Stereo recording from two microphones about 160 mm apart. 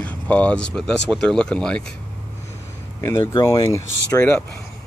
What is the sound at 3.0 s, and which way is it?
Speech, 25° left (ahead or behind).